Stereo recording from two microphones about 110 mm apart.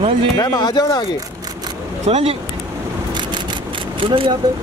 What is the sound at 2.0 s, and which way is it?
Speech, 80° right.